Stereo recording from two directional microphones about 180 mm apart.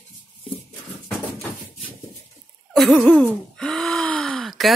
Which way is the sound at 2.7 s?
Centre (ahead or behind).